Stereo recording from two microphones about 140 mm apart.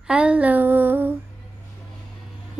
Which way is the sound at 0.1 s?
10° right (ahead or behind).